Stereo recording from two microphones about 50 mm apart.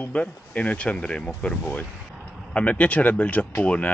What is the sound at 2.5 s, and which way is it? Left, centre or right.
Speech, left.